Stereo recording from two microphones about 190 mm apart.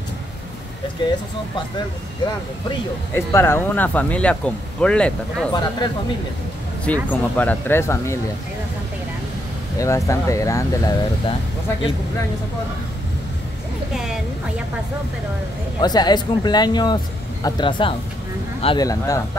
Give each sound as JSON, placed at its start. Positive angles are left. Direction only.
{"t": 3.2, "sound": "speech", "side_deg": 15}
{"t": 5.5, "sound": "speech", "side_deg": 20}
{"t": 6.8, "sound": "speech", "side_deg": 10}
{"t": 9.8, "sound": "speech", "side_deg": 15}
{"t": 15.8, "sound": "speech", "side_deg": 20}